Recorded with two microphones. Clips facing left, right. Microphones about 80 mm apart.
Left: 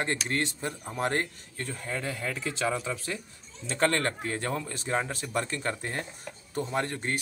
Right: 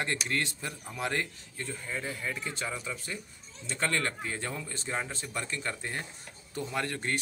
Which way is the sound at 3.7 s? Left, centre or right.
Left.